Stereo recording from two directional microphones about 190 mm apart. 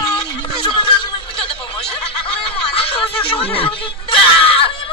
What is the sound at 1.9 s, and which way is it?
Snicker, 30° left (ahead or behind).